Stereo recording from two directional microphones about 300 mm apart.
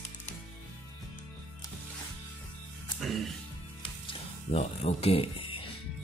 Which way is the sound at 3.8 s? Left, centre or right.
Centre.